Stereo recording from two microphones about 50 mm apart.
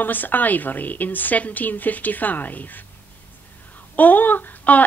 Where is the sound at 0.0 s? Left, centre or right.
Left.